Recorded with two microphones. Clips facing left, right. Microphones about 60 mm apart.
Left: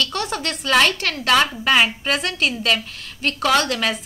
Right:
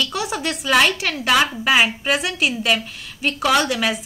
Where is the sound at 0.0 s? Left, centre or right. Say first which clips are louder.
Right 1 dB; centre.